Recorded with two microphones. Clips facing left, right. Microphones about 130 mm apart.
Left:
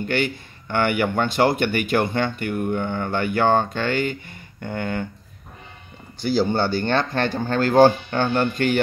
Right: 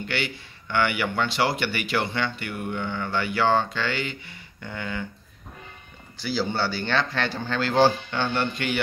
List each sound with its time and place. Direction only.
0.0 s a man's voice: 45° left (ahead or behind)
6.1 s a man's voice: 50° left (ahead or behind)